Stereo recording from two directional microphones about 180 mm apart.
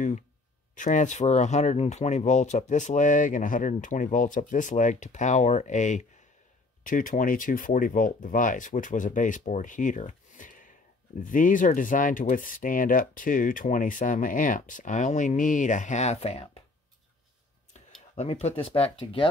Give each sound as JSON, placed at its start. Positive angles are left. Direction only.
{"t": 0.7, "sound": "speech", "side_deg": 45}
{"t": 17.7, "sound": "speech", "side_deg": 40}